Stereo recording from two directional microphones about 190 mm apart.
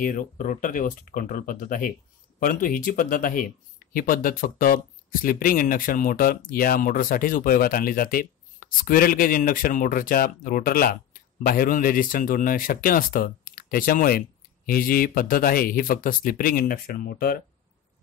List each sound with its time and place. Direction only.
0.0 s speech: 45° left (ahead or behind)